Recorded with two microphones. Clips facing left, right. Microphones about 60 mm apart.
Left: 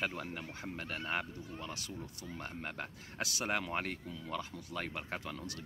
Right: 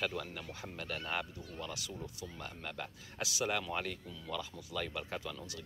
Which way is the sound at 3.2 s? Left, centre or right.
Left.